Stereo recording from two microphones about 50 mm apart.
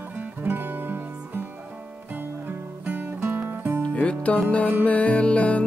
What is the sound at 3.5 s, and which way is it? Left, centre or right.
Music, right.